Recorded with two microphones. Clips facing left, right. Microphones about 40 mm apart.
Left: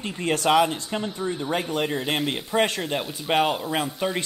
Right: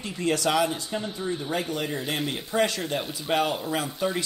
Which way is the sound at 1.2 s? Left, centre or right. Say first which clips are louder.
Left 2 dB; centre.